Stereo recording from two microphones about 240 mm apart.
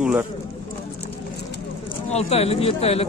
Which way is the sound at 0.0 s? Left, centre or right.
Centre.